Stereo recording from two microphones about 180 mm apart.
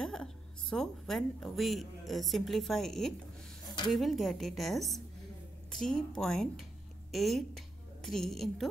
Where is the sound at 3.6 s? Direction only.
25° left (ahead or behind).